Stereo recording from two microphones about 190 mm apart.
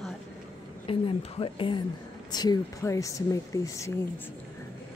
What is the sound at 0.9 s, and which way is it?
Speech, 30° left (ahead or behind).